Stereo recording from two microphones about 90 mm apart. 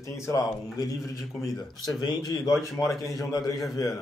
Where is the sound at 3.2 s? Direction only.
40° left (ahead or behind).